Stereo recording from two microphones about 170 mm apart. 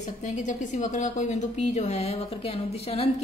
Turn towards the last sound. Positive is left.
turn(degrees=35)  # may be behind; listen again after turning